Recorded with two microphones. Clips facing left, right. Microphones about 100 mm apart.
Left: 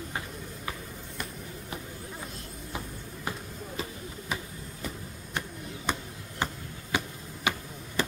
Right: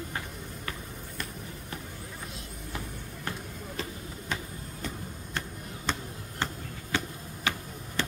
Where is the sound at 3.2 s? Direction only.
10° left (ahead or behind).